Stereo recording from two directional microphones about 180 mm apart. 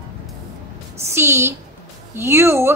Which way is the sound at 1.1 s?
15° right (ahead or behind).